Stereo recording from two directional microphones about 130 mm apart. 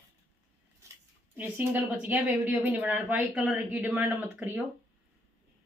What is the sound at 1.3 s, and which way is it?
Speech, 15° right (ahead or behind).